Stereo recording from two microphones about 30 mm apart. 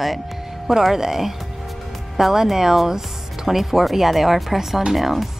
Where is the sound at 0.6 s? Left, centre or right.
Centre.